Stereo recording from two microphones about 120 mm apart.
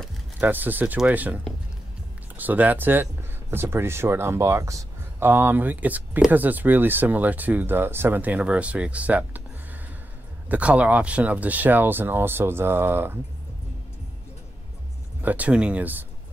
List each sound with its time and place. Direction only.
0.4 s speech: 15° right (ahead or behind)
10.5 s speech: 10° right (ahead or behind)
15.2 s speech: 10° right (ahead or behind)